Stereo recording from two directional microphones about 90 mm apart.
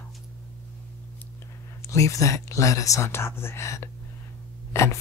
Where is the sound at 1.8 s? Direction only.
35° left (ahead or behind).